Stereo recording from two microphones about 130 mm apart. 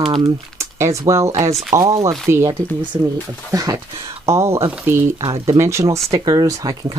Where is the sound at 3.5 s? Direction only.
30° right (ahead or behind).